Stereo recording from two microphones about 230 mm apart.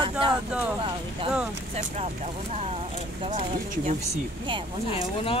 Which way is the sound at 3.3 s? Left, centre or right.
Right.